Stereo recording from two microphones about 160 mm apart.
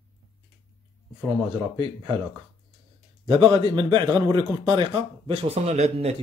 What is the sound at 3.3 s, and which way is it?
A man's voice, 30° right (ahead or behind).